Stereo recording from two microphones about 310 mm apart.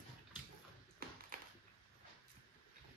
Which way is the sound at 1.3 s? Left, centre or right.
Right.